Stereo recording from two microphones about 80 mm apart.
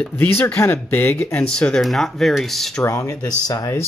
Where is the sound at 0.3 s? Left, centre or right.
Left.